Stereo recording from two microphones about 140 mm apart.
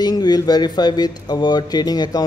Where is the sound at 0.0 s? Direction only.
30° left (ahead or behind).